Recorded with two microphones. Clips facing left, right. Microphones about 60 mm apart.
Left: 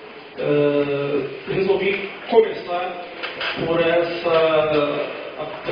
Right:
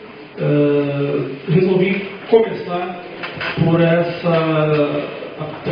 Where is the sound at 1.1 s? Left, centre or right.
Right.